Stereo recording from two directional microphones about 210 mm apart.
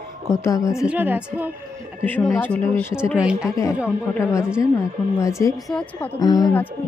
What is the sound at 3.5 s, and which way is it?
Speech, 15° left (ahead or behind).